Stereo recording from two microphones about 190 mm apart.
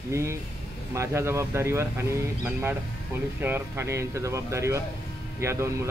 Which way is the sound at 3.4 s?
15° right (ahead or behind).